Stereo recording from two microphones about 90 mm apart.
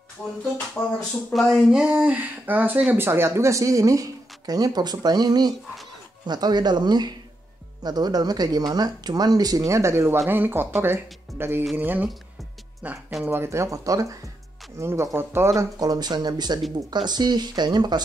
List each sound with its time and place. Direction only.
0.2 s music: 20° left (ahead or behind)
0.8 s speech: 35° left (ahead or behind)
1.3 s speech: centre (ahead or behind); by 13.0 s 15° right (ahead or behind)
13.2 s speech: 25° right (ahead or behind)
15.8 s speech: 50° right (ahead or behind)